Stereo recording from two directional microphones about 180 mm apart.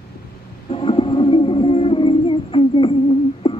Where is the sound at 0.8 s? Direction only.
30° left (ahead or behind).